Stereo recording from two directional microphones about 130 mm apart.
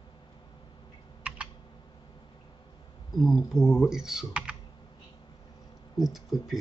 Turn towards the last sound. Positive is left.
turn(degrees=0)  # may be behind; listen again after turning